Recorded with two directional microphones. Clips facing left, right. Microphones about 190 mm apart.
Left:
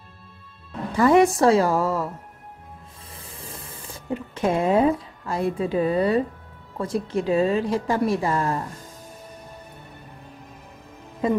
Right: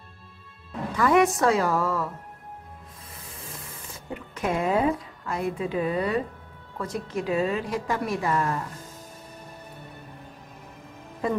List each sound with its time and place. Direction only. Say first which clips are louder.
0.9 s a woman's voice: left 4 dB; 30° left (ahead or behind)
3.3 s a sound: left 2 dB; 30° left (ahead or behind)
6.8 s a woman's voice: left 5 dB; 30° left (ahead or behind)
11.2 s a woman's voice: left 4 dB; 20° left (ahead or behind)